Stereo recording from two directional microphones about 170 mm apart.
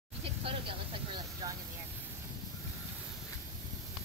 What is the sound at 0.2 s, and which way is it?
Vehicle, 30° right (ahead or behind).